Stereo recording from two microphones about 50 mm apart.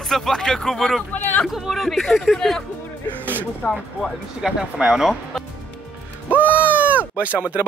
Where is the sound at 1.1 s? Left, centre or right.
Left.